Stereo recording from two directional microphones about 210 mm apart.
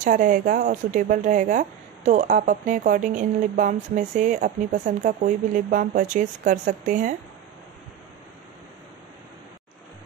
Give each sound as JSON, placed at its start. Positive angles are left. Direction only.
{"t": 0.0, "sound": "speech", "side_deg": -40}